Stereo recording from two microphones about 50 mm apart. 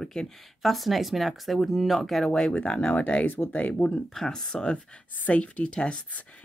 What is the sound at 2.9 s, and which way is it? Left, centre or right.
Speech, left.